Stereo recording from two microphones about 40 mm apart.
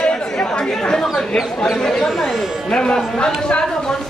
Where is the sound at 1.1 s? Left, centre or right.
Centre.